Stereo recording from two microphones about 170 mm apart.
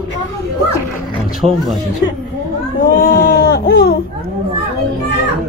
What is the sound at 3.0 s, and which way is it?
Baby cry, 60° left (ahead or behind).